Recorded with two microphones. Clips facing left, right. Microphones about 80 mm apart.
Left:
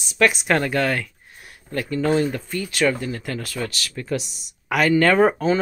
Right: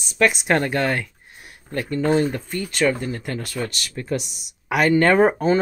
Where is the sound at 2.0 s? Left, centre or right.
Centre.